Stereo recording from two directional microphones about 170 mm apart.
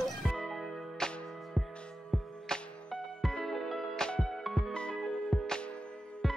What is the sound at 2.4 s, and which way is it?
Music, 5° left (ahead or behind).